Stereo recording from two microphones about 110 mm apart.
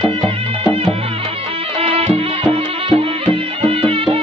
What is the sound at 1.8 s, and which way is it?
Music, 65° right (ahead or behind).